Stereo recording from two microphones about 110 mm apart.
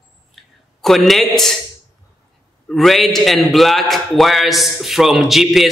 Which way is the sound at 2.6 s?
Centre (ahead or behind).